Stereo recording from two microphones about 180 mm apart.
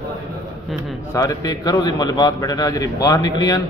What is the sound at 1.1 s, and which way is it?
A man's voice, 20° left (ahead or behind).